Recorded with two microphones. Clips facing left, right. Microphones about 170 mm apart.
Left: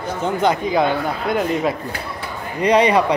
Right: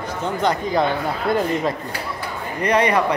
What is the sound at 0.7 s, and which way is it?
Speech, centre (ahead or behind).